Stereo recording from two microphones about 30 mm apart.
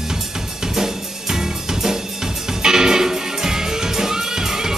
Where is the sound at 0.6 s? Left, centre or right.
Centre.